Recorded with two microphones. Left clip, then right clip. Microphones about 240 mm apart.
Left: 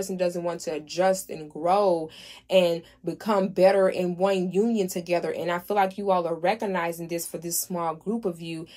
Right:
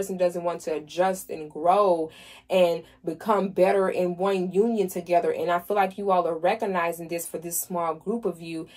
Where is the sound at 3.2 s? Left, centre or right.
Left.